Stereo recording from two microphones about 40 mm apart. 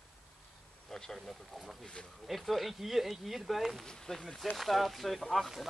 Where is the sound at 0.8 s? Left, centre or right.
Centre.